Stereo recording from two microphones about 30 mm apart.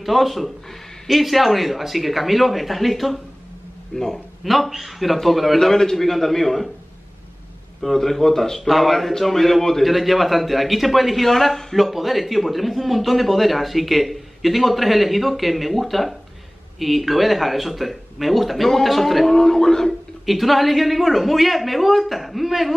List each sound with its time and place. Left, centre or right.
0.0 s speech: centre
3.9 s a man's voice: centre
4.5 s speech: centre
5.6 s a man's voice: centre
7.8 s a man's voice: centre
11.2 s a man's voice: centre
11.7 s a man's voice: centre
19.9 s speech: centre